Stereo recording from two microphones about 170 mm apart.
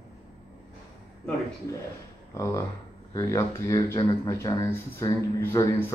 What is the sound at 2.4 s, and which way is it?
Speech, 15° left (ahead or behind).